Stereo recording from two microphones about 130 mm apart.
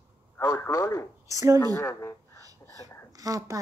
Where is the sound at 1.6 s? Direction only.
20° left (ahead or behind).